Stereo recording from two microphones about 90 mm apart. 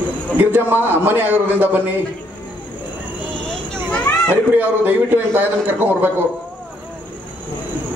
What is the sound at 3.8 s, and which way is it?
Children playing, 10° left (ahead or behind).